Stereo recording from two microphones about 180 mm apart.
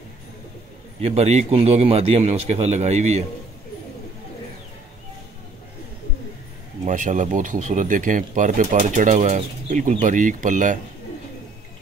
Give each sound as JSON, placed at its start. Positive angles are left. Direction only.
{"t": 1.0, "sound": "a man's voice", "side_deg": -35}
{"t": 6.9, "sound": "speech", "side_deg": -45}